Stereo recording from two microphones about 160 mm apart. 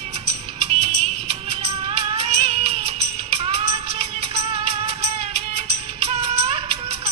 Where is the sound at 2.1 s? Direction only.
40° right (ahead or behind).